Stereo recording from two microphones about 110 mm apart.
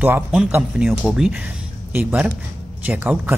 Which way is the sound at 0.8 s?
5° right (ahead or behind).